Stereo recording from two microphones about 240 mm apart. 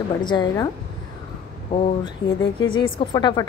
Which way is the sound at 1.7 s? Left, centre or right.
Centre.